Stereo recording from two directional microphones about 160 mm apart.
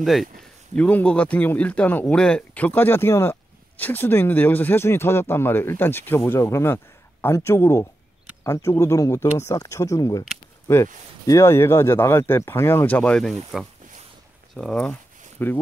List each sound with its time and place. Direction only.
0.0 s speech: centre (ahead or behind)
14.6 s speech: 5° left (ahead or behind)